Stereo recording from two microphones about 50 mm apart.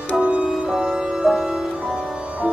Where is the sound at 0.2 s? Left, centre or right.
Right.